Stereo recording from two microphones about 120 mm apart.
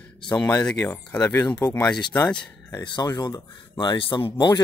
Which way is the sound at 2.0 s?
35° left (ahead or behind).